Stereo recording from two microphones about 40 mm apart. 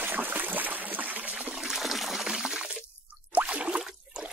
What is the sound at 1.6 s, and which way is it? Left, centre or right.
Toilet flush, centre.